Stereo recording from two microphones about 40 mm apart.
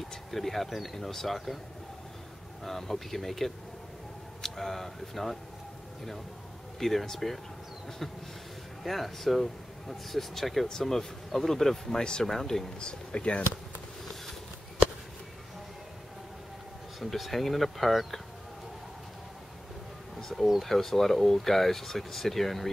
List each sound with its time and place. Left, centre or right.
0.0 s speech: centre
2.6 s speech: centre
6.8 s speech: centre
8.8 s speech: centre
12.7 s speech: left
17.0 s speech: centre
20.2 s a sound: centre
20.6 s speech: centre